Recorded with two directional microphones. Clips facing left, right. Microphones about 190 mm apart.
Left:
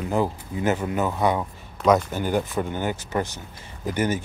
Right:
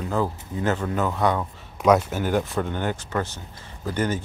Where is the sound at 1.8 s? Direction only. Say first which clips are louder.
Right 1 dB; 10° right (ahead or behind).